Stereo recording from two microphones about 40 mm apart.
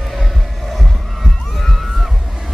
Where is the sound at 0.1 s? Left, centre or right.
Centre.